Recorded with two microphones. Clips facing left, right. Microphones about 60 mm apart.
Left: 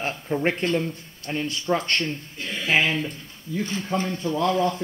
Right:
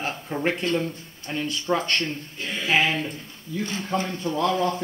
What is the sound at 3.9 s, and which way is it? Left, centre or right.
Speech, centre.